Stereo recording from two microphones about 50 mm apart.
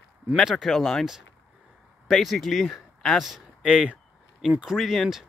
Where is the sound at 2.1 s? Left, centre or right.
Centre.